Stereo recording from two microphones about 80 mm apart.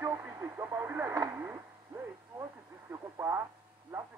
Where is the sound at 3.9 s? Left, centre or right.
Right.